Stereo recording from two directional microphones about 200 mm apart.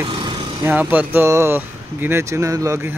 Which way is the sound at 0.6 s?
10° right (ahead or behind).